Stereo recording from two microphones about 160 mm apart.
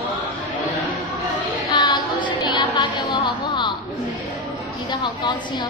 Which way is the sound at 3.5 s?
30° left (ahead or behind).